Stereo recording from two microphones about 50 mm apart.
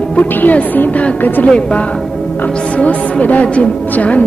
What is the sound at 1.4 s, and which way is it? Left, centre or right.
A woman's voice, left.